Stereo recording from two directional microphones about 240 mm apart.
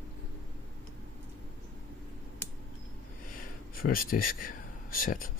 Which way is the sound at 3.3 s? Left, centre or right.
Left.